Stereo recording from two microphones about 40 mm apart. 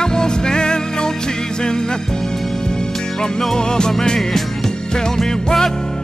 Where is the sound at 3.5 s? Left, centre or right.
Centre.